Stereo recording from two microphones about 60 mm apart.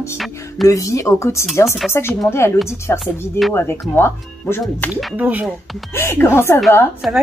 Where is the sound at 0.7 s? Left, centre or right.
Left.